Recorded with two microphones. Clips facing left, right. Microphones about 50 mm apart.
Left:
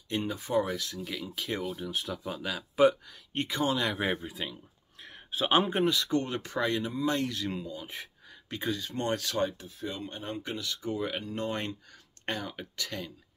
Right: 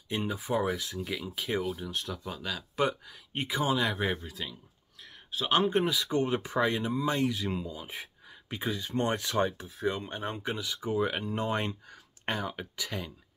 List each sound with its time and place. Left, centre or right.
0.1 s speech: centre
3.3 s speech: centre
4.0 s speech: centre
5.0 s a sound: left
5.5 s speech: centre
5.8 s speech: centre